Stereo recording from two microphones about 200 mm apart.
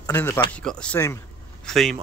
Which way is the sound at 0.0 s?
15° left (ahead or behind).